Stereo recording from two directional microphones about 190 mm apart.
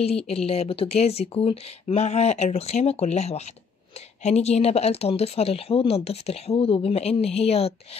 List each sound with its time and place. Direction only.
0.3 s speech: 30° left (ahead or behind)